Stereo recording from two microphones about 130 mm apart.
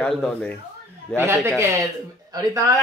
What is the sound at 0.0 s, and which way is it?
Speech, 10° left (ahead or behind).